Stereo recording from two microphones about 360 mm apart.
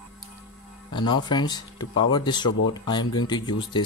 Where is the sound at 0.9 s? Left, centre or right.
Centre.